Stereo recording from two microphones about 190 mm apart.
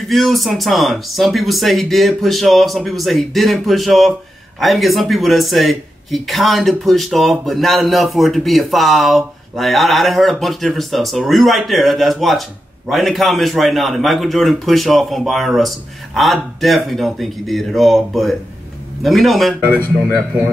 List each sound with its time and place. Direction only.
0.1 s speech: centre (ahead or behind)